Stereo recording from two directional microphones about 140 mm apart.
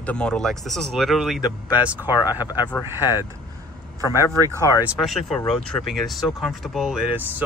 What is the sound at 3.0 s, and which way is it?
Speech, 25° left (ahead or behind).